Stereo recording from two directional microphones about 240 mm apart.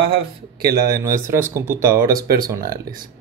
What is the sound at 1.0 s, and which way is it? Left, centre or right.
Speech, centre.